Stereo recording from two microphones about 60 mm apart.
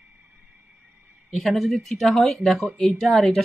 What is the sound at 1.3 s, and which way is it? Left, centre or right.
Speech, centre.